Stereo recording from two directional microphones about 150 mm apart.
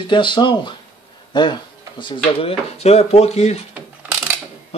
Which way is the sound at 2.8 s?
45° left (ahead or behind).